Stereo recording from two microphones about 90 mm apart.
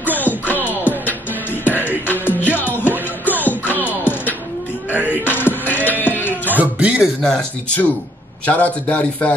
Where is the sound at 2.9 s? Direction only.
20° right (ahead or behind).